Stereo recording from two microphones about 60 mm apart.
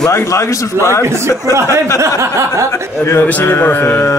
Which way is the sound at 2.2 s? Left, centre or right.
Right.